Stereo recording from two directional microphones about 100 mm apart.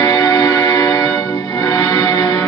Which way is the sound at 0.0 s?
35° left (ahead or behind).